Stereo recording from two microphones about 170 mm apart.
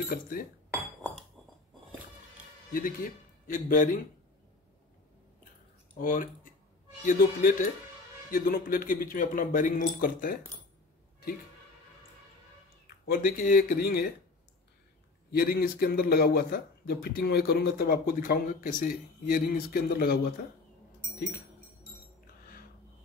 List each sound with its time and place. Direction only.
0.1 s speech: 55° left (ahead or behind)
2.7 s speech: 55° left (ahead or behind)
5.9 s speech: 55° left (ahead or behind)
12.8 s speech: 55° left (ahead or behind)
15.3 s speech: 60° left (ahead or behind)